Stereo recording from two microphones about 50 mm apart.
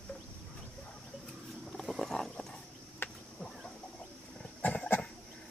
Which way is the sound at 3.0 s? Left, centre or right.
Left.